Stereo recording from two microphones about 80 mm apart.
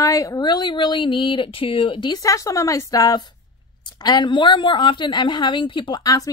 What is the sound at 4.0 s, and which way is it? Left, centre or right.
A woman's voice, left.